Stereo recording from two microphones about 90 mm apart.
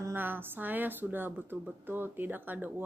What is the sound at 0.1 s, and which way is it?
Speech, 20° right (ahead or behind).